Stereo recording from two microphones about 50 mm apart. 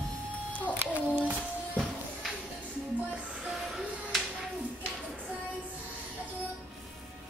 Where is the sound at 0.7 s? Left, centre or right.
Right.